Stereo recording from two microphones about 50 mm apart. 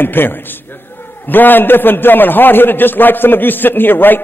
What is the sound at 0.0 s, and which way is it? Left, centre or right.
A man's voice, left.